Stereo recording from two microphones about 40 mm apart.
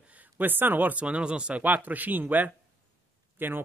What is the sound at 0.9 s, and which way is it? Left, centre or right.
Speech, right.